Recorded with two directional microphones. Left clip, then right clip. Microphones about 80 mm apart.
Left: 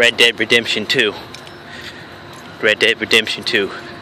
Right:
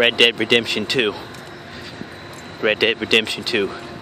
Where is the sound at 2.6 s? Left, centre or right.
Centre.